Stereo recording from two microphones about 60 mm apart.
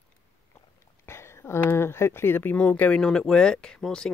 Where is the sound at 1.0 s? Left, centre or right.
Left.